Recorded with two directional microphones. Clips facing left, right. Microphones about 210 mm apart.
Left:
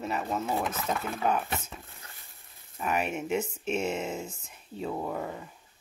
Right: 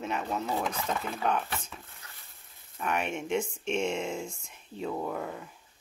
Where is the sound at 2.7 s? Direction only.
5° left (ahead or behind).